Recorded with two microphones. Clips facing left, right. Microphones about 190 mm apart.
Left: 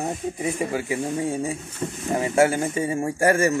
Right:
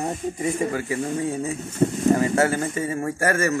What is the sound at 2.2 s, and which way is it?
Speech, 15° left (ahead or behind).